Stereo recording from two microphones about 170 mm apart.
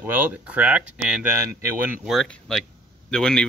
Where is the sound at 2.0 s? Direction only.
Centre (ahead or behind).